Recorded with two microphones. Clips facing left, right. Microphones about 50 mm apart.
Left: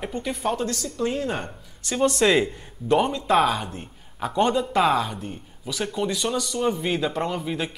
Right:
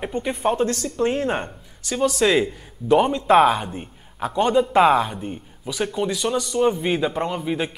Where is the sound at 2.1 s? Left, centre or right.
Centre.